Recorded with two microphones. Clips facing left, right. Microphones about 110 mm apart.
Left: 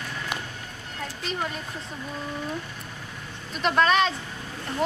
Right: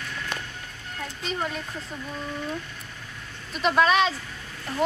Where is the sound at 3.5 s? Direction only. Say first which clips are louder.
Right 1 dB; centre (ahead or behind).